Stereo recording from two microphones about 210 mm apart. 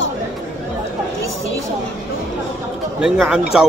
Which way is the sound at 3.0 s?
5° right (ahead or behind).